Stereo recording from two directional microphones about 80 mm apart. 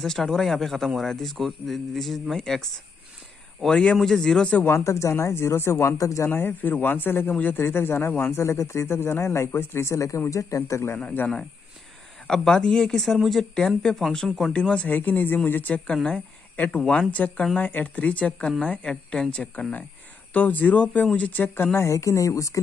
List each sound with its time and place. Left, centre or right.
0.0 s a man's voice: centre
4.6 s speech: left
12.3 s a man's voice: centre
14.9 s speech: left
15.9 s speech: centre
21.7 s speech: left